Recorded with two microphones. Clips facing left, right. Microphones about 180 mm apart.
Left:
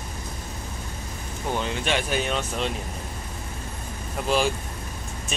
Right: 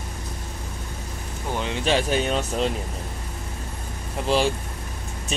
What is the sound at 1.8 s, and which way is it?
Speech, 35° right (ahead or behind).